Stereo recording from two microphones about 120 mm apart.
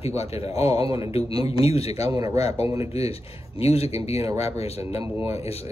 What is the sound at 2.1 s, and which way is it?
Speech, 30° right (ahead or behind).